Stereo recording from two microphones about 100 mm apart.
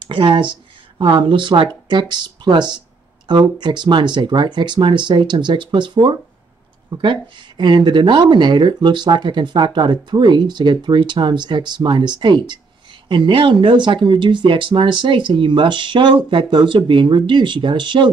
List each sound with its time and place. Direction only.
0.1 s speech: 60° right (ahead or behind)